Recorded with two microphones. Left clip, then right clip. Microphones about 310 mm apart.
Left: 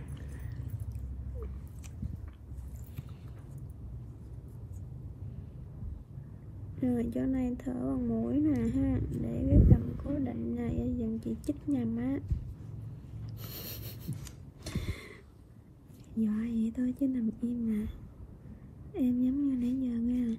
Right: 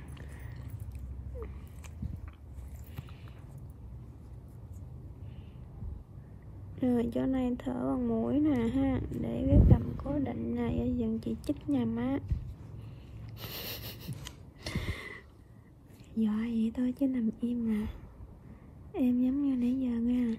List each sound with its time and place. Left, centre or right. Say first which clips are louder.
6.8 s a woman's voice: right 2 dB; right
14.0 s a sound: right 1 dB; right
16.2 s a woman's voice: right 1 dB; right
18.9 s a woman's voice: right 1 dB; right